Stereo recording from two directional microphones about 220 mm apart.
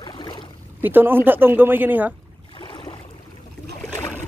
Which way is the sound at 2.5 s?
20° left (ahead or behind).